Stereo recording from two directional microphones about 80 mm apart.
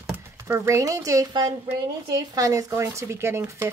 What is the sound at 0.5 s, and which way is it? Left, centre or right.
Speech, right.